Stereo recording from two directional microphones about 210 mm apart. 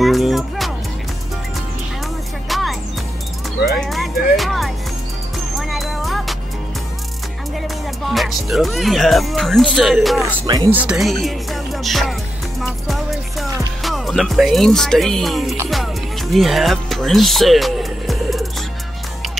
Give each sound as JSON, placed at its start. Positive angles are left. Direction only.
{"t": 0.0, "sound": "music", "side_deg": 0}
{"t": 2.5, "sound": "music", "side_deg": 0}
{"t": 7.6, "sound": "speech", "side_deg": 0}
{"t": 10.4, "sound": "speech", "side_deg": -20}
{"t": 10.7, "sound": "music", "side_deg": -5}
{"t": 13.8, "sound": "speech", "side_deg": 0}
{"t": 15.7, "sound": "music", "side_deg": 0}